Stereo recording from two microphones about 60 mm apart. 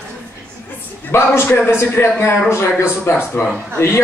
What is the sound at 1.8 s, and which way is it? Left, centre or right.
Speech, left.